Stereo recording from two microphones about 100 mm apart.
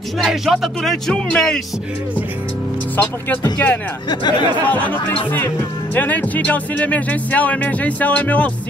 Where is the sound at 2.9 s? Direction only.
15° left (ahead or behind).